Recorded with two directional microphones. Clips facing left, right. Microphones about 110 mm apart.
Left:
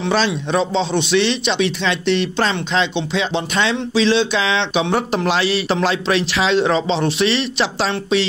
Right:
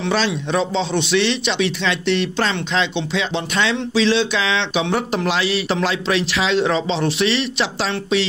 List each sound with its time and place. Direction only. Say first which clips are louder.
0.1 s a man's voice: left 2 dB; 30° left (ahead or behind)